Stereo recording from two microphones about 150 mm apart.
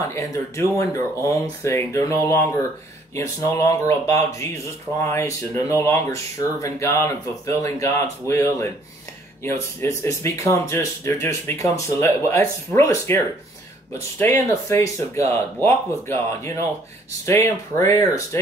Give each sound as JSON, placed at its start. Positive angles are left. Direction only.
{"t": 0.1, "sound": "speech", "side_deg": 20}
{"t": 3.2, "sound": "speech", "side_deg": 20}
{"t": 14.5, "sound": "speech", "side_deg": 20}